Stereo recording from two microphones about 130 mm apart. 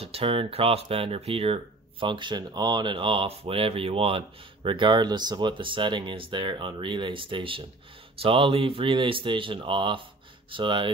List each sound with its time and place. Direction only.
0.0 s speech: 45° right (ahead or behind)